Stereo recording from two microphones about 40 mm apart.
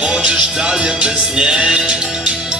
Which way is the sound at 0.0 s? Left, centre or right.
Right.